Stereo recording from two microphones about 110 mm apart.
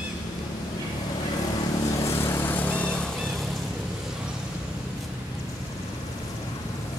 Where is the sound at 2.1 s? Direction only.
25° left (ahead or behind).